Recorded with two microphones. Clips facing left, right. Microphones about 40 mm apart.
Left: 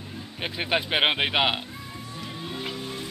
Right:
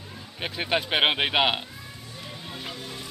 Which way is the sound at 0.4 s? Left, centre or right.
Centre.